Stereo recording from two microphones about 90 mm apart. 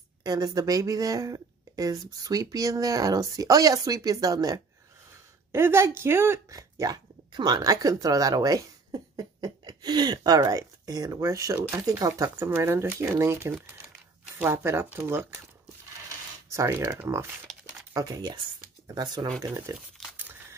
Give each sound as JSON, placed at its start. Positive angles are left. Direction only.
{"t": 0.2, "sound": "a woman's voice", "side_deg": -45}
{"t": 5.5, "sound": "speech", "side_deg": -30}
{"t": 6.5, "sound": "speech", "side_deg": -45}
{"t": 12.4, "sound": "speech", "side_deg": -25}
{"t": 16.4, "sound": "a woman's voice", "side_deg": -35}
{"t": 19.4, "sound": "speech", "side_deg": -35}